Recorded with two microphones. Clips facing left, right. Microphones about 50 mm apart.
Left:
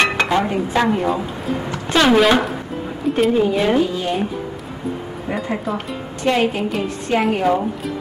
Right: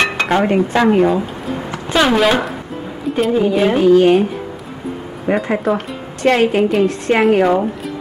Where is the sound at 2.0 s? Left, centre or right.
Centre.